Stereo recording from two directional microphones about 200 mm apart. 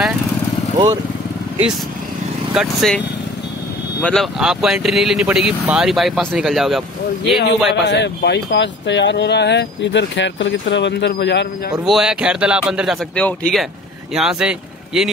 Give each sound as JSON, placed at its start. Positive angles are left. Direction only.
{"t": 2.5, "sound": "speech", "side_deg": 0}
{"t": 4.0, "sound": "speech", "side_deg": 0}
{"t": 7.3, "sound": "speech", "side_deg": 55}
{"t": 11.8, "sound": "speech", "side_deg": -5}